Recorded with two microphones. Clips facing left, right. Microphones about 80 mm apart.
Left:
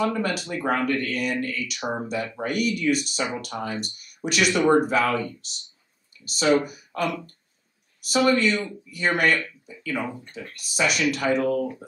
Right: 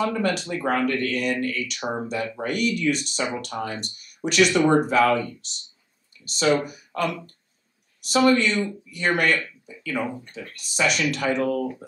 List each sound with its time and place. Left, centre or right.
0.0 s speech: centre